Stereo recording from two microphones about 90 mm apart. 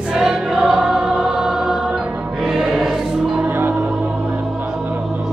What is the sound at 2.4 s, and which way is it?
Music, 5° right (ahead or behind).